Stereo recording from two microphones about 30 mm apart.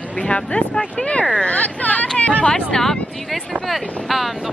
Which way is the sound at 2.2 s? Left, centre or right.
Left.